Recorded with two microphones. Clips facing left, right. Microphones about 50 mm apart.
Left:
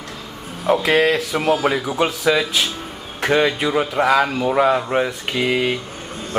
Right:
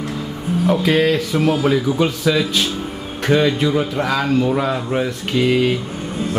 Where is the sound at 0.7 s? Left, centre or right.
Centre.